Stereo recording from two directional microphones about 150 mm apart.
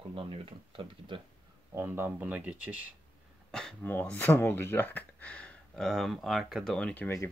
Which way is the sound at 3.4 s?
5° left (ahead or behind).